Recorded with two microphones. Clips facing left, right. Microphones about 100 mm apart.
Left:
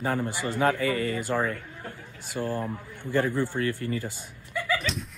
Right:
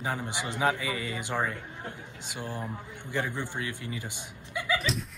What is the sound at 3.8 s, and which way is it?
Speech, 50° left (ahead or behind).